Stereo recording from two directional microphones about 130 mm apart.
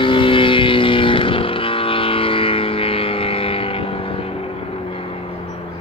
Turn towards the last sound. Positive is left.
turn(degrees=45)  # may be behind; listen again after turning